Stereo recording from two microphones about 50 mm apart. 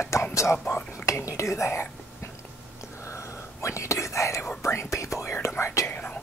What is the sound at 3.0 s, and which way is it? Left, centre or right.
Whispering, left.